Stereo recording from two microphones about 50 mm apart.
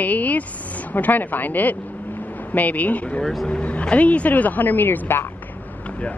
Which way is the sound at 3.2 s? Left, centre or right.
Centre.